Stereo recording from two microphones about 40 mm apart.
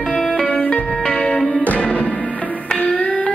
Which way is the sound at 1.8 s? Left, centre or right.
Left.